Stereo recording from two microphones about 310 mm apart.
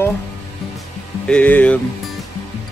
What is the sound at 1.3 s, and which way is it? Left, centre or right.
Speech, centre.